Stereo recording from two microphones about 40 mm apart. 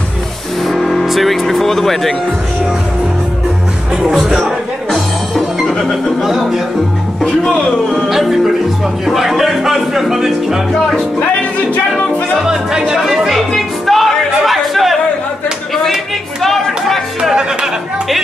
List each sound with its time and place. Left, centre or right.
0.7 s speech: centre
3.9 s music: centre
4.9 s music: centre
5.9 s speech: centre
7.9 s speech: centre
12.4 s music: centre
13.5 s music: centre
16.4 s chatter: centre